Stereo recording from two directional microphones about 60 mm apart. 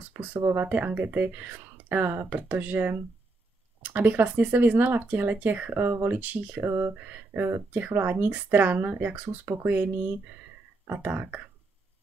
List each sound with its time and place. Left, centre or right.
0.1 s a sound: right
0.4 s speech: right
0.7 s speech: right
5.7 s speech: right
11.0 s speech: right